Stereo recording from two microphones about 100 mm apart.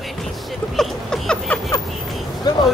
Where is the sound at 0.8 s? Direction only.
5° left (ahead or behind).